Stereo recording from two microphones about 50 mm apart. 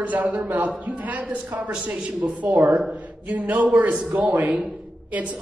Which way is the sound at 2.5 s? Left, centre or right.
Right.